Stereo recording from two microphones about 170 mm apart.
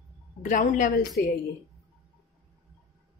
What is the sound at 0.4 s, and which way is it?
Speech, 50° left (ahead or behind).